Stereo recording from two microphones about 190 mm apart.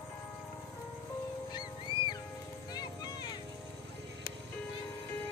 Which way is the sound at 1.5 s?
20° left (ahead or behind).